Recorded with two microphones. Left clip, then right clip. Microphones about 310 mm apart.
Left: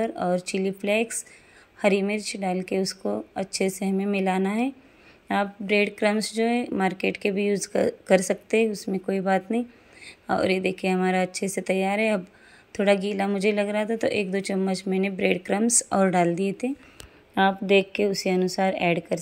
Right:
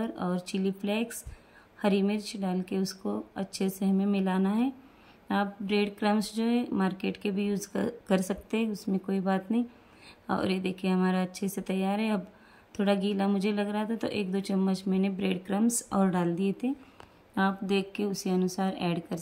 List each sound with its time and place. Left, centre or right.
0.0 s speech: centre
7.2 s speech: centre
7.5 s speech: centre
15.0 s speech: left
15.6 s speech: centre